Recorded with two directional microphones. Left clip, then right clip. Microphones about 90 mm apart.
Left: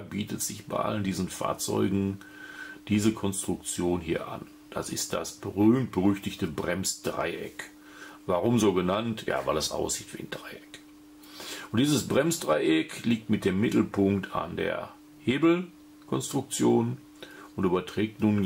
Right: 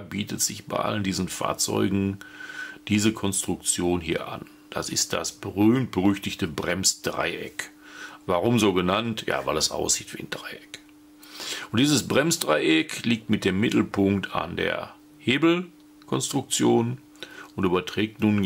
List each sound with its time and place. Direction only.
0.1 s speech: 30° right (ahead or behind)